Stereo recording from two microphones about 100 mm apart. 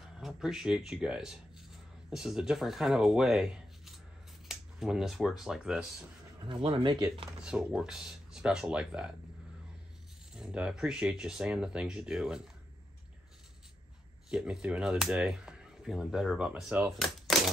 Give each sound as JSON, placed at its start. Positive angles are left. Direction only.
{"t": 0.0, "sound": "speech", "side_deg": -5}
{"t": 6.4, "sound": "speech", "side_deg": -55}
{"t": 7.4, "sound": "speech", "side_deg": -10}
{"t": 10.3, "sound": "speech", "side_deg": -10}
{"t": 14.3, "sound": "speech", "side_deg": -10}